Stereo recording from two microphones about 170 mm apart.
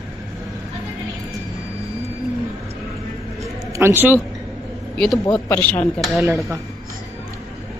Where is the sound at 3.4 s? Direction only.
15° right (ahead or behind).